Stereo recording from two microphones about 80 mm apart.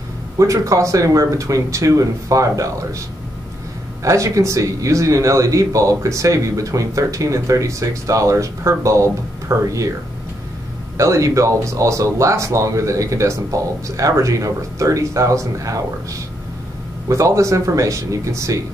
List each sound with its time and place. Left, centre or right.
0.4 s speech: right
4.0 s speech: right
11.0 s speech: right